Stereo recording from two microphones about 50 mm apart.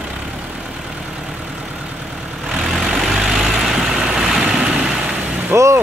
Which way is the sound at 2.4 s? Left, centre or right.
Centre.